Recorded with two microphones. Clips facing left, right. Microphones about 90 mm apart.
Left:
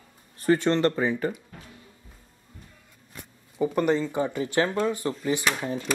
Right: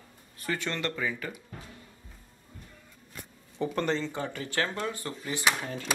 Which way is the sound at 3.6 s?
10° left (ahead or behind).